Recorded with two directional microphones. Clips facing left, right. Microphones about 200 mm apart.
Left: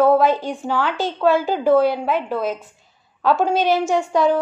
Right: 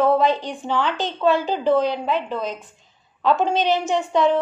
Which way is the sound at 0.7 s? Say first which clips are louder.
Even; 20° right (ahead or behind).